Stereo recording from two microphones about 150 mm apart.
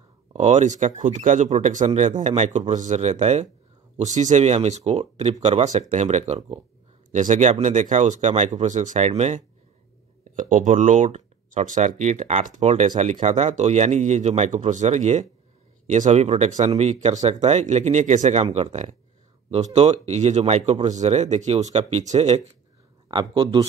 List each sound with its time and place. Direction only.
0.3 s speech: 45° right (ahead or behind)
10.5 s speech: 55° right (ahead or behind)
23.0 s speech: 35° right (ahead or behind)